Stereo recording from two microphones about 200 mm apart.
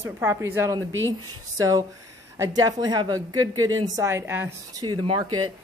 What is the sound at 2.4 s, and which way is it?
A woman's voice, 20° right (ahead or behind).